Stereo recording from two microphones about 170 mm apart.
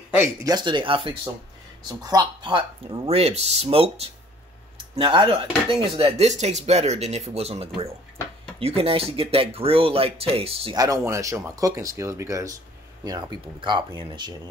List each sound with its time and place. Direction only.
0.1 s speech: 15° right (ahead or behind); by 10.8 s 35° right (ahead or behind)
10.8 s speech: 20° right (ahead or behind)